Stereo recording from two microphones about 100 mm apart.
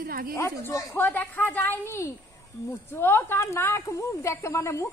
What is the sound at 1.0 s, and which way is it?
A woman's voice, 15° left (ahead or behind).